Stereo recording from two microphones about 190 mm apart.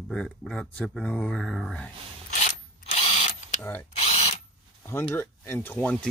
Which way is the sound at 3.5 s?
10° left (ahead or behind).